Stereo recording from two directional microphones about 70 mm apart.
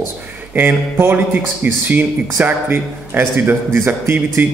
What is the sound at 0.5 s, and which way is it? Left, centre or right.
A man's voice, right.